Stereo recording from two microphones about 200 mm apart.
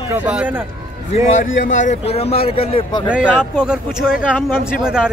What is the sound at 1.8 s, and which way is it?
Speech, 35° left (ahead or behind).